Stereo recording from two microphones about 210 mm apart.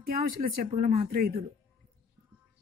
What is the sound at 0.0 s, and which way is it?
Speech, 40° right (ahead or behind).